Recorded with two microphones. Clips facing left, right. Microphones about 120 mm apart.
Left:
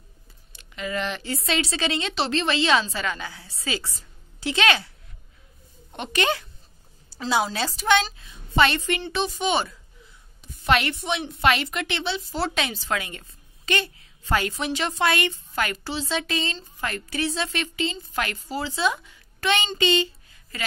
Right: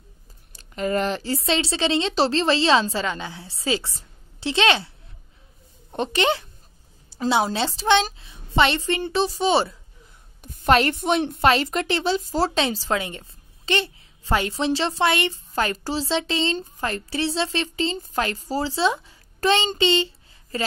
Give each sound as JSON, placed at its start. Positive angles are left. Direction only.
{"t": 0.5, "sound": "a woman's voice", "side_deg": -40}
{"t": 7.5, "sound": "a woman's voice", "side_deg": -25}
{"t": 10.4, "sound": "a woman's voice", "side_deg": -50}
{"t": 11.4, "sound": "a woman's voice", "side_deg": -35}